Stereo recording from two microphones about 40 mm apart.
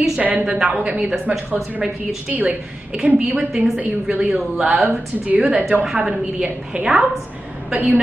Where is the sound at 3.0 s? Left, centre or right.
Right.